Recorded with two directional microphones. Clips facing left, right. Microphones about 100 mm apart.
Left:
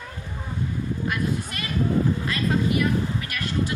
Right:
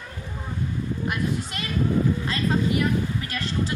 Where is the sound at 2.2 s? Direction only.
30° right (ahead or behind).